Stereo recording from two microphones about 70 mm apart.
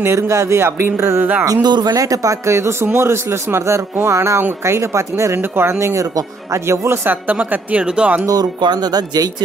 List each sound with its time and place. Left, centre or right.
0.0 s a man's voice: right
1.6 s speech: right
2.0 s a man's voice: right
7.1 s speech: right
8.3 s speech: right